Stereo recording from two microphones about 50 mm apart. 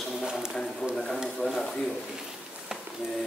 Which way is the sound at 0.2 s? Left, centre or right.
Centre.